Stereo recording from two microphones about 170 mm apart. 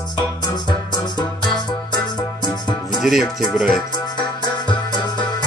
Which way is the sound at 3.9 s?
25° left (ahead or behind).